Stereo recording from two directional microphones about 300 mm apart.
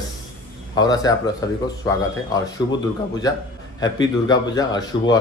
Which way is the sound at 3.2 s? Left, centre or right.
Centre.